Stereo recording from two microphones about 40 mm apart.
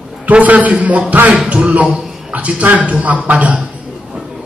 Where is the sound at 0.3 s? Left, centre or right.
Right.